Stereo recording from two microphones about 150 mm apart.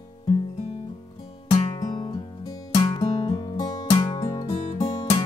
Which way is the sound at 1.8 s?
30° left (ahead or behind).